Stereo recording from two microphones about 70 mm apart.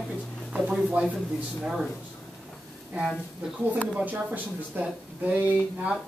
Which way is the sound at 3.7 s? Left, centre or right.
Right.